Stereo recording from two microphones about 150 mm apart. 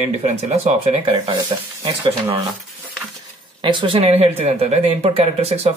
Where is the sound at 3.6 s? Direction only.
30° right (ahead or behind).